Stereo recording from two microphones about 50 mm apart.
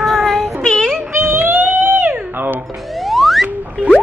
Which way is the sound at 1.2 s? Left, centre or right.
Right.